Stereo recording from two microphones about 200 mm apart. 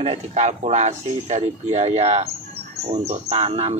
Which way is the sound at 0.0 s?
30° right (ahead or behind).